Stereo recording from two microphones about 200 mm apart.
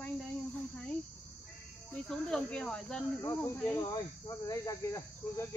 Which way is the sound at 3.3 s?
15° left (ahead or behind).